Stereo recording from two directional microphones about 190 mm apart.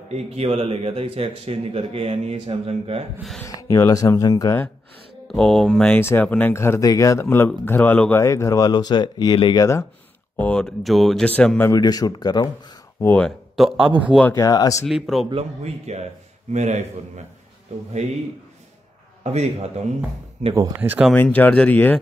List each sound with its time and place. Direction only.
0.1 s speech: 35° right (ahead or behind)
3.4 s speech: 15° left (ahead or behind)
5.3 s speech: centre (ahead or behind)
10.3 s speech: 5° left (ahead or behind)
13.1 s speech: centre (ahead or behind)
14.2 s speech: 15° left (ahead or behind)
14.9 s speech: centre (ahead or behind)
15.2 s speech: 30° right (ahead or behind)
19.2 s speech: 35° right (ahead or behind)
20.5 s speech: 15° right (ahead or behind)
21.1 s speech: 10° left (ahead or behind)